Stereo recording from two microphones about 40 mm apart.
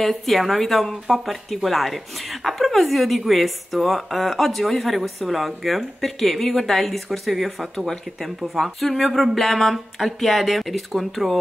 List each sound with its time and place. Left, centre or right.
0.0 s a woman's voice: centre